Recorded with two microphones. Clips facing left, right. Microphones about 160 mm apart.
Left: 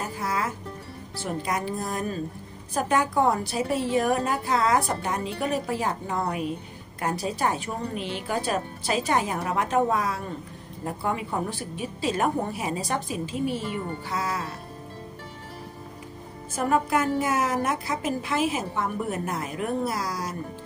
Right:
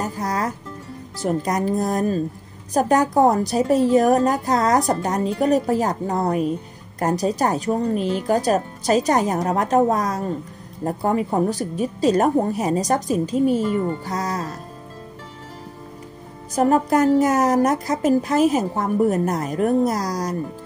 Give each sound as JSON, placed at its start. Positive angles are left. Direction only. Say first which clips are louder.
{"t": 0.0, "sound": "music", "louder": "right 5 dB", "side_deg": -40}
{"t": 1.1, "sound": "a woman's voice", "louder": "right 7 dB", "side_deg": -40}
{"t": 16.5, "sound": "a woman's voice", "louder": "right 7 dB", "side_deg": -40}